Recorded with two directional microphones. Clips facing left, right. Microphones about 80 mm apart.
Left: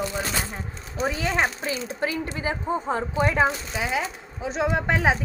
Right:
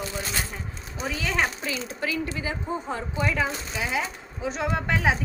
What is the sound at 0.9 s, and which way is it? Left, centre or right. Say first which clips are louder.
Speech: left 3 dB; left.